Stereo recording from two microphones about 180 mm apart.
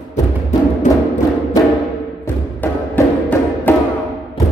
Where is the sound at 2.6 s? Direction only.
10° left (ahead or behind).